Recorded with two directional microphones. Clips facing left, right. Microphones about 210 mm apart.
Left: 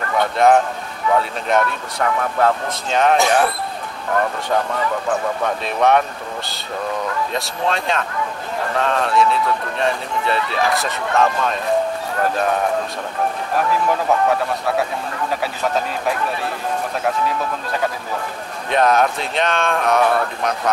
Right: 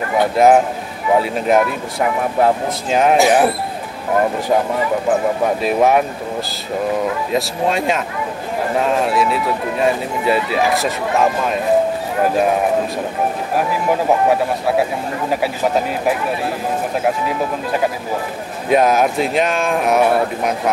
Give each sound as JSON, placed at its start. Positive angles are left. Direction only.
{"t": 0.2, "sound": "speech", "side_deg": -5}
{"t": 2.9, "sound": "speech", "side_deg": -5}
{"t": 5.6, "sound": "speech", "side_deg": -5}
{"t": 13.6, "sound": "speech", "side_deg": -15}
{"t": 18.7, "sound": "speech", "side_deg": -5}
{"t": 20.0, "sound": "speech", "side_deg": -20}